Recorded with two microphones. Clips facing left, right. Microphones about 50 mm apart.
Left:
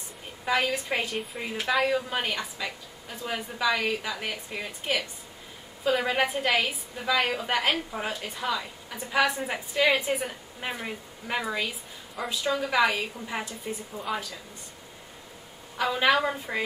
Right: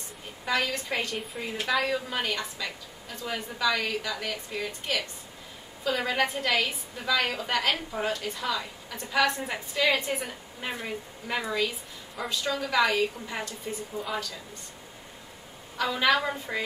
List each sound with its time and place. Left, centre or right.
0.5 s a woman's voice: centre
15.8 s a woman's voice: centre
16.2 s a woman's voice: centre